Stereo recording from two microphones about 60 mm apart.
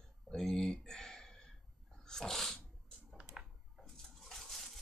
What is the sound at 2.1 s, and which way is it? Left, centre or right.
Dog, centre.